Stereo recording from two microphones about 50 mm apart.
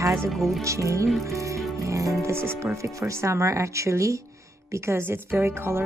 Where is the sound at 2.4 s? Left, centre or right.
Right.